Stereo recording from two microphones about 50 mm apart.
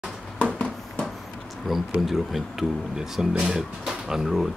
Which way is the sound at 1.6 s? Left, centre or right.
Centre.